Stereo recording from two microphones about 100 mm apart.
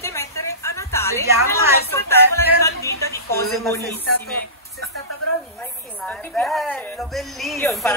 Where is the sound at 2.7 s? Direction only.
30° left (ahead or behind).